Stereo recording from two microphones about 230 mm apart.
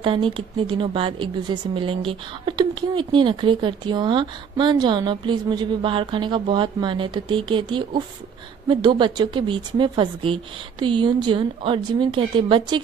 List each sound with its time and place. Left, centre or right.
0.0 s a woman's voice: right